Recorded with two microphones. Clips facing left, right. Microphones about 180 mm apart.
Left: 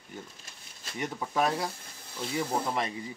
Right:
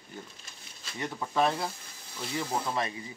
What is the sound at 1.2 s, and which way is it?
Speech, 10° left (ahead or behind).